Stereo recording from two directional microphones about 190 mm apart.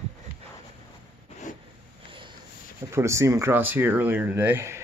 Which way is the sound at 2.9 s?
15° right (ahead or behind).